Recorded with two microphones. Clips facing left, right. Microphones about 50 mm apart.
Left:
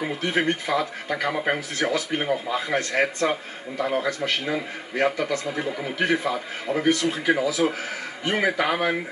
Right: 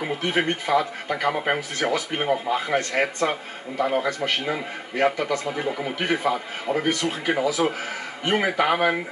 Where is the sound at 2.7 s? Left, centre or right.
Centre.